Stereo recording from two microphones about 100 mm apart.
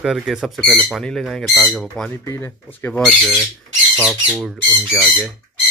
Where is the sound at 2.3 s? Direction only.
20° left (ahead or behind).